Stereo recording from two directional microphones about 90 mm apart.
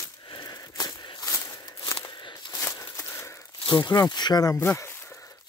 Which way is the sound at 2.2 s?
55° left (ahead or behind).